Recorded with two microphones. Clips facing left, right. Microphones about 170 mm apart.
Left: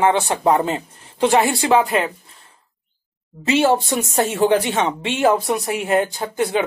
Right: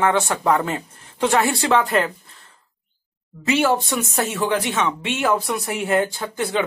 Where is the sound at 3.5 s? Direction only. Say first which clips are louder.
Left 3 dB; 25° left (ahead or behind).